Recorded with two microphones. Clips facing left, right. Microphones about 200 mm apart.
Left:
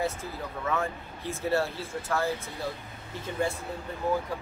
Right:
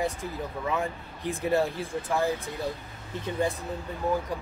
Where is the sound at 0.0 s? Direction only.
15° right (ahead or behind).